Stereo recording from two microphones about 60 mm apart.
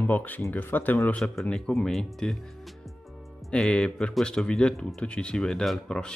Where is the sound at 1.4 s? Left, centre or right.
Centre.